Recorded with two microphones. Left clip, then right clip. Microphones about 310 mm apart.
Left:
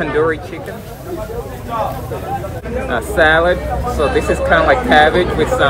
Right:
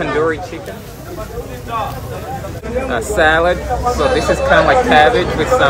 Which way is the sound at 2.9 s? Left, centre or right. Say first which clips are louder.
Left 1 dB; centre.